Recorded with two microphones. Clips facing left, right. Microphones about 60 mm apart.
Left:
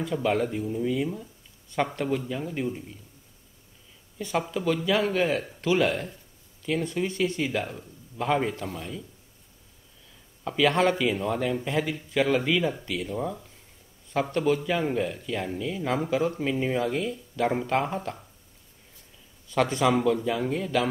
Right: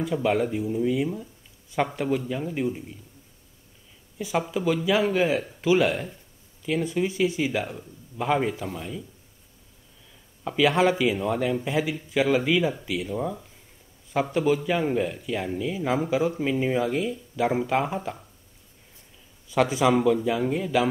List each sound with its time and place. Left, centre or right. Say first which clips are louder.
0.0 s speech: right 2 dB; centre
4.2 s speech: right 2 dB; centre
10.4 s speech: right 2 dB; centre
19.5 s speech: right 2 dB; centre